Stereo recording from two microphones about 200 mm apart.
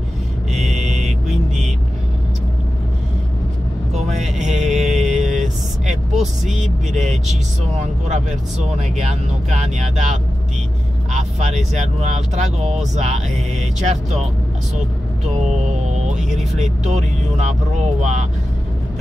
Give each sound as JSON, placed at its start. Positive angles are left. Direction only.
{"t": 0.7, "sound": "music", "side_deg": -35}
{"t": 3.9, "sound": "vehicle", "side_deg": -35}
{"t": 4.6, "sound": "music", "side_deg": -35}
{"t": 5.3, "sound": "vehicle", "side_deg": -40}
{"t": 6.1, "sound": "speech", "side_deg": 0}
{"t": 7.8, "sound": "speech", "side_deg": -35}
{"t": 11.3, "sound": "speech", "side_deg": -35}
{"t": 15.4, "sound": "music", "side_deg": -35}
{"t": 16.5, "sound": "speech", "side_deg": -35}